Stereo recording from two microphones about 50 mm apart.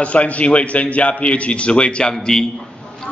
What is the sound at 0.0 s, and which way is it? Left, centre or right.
A man's voice, left.